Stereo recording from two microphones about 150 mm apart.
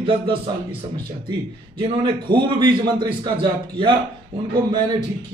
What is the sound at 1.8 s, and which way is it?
A man's voice, 35° right (ahead or behind).